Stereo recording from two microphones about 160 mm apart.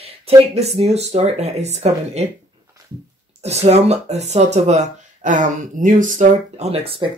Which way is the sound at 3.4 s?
40° right (ahead or behind).